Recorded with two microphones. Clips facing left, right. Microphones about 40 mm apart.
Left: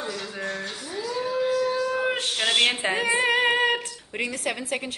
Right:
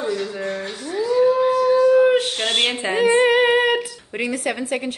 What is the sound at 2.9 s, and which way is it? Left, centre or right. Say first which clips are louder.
A woman's voice: right 7 dB; centre.